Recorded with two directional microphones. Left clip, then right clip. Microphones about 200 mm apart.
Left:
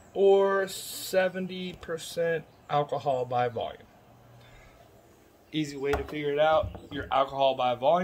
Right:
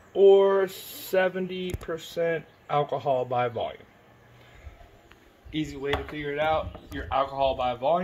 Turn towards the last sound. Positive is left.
turn(degrees=-5)  # may be behind; listen again after turning